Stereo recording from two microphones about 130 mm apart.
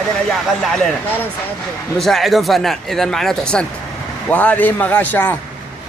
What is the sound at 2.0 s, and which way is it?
A man's voice, centre (ahead or behind).